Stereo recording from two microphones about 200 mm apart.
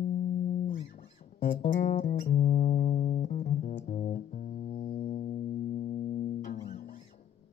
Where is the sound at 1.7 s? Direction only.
55° left (ahead or behind).